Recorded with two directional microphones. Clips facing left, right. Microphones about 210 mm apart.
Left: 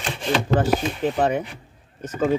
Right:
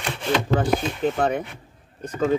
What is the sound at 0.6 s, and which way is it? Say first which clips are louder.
A man's voice: left 1 dB; 10° left (ahead or behind).